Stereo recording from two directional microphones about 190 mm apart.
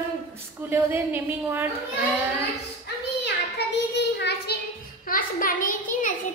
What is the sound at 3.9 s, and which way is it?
Child singing, 60° left (ahead or behind).